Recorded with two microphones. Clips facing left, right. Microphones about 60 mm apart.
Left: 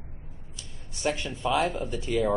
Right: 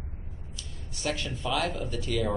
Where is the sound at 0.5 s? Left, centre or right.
Left.